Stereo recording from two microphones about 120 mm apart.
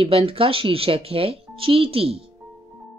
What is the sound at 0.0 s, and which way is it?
Speech, 50° right (ahead or behind).